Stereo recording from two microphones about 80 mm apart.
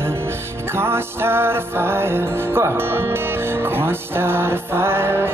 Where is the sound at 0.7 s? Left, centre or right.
Right.